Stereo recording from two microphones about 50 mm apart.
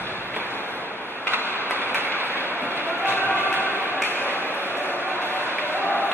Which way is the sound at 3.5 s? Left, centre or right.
Right.